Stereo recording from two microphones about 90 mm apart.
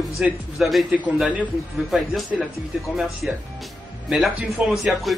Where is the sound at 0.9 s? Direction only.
15° right (ahead or behind).